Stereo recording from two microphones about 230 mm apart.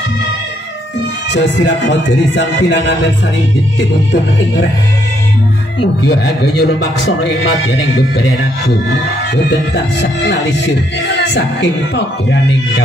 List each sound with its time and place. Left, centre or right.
1.3 s speech: left
5.8 s speech: left
10.2 s speech: left